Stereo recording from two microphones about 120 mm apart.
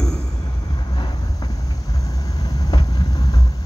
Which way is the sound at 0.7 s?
35° left (ahead or behind).